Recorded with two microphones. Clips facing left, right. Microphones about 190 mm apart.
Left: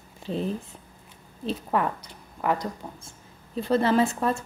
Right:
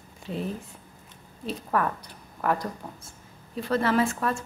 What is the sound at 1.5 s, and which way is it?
A woman's voice, 20° left (ahead or behind).